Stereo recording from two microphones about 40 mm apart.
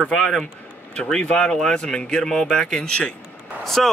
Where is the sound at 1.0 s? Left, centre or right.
Left.